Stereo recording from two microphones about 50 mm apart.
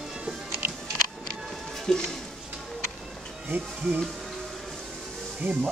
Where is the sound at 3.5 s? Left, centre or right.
Right.